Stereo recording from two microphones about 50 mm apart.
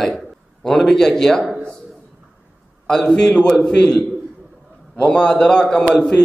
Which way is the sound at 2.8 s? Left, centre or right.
Centre.